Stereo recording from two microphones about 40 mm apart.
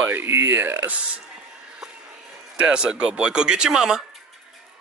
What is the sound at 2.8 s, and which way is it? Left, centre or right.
Speech, right.